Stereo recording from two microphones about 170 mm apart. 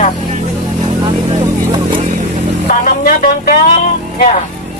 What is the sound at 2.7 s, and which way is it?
Speech, 50° left (ahead or behind).